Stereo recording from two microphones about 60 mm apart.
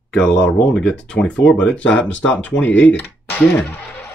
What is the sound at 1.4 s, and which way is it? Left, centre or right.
Speech, centre.